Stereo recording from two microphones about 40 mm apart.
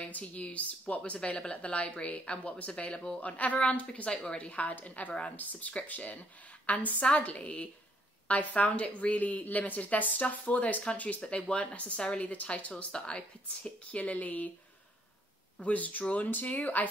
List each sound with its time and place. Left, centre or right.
0.1 s speech: left
3.2 s a woman's voice: left
12.9 s a woman's voice: left
13.6 s speech: left
15.6 s speech: left
16.3 s speech: left